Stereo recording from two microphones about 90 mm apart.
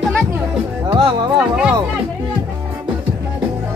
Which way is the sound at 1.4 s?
10° right (ahead or behind).